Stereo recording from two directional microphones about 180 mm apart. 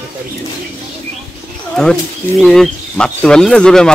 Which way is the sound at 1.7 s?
5° left (ahead or behind).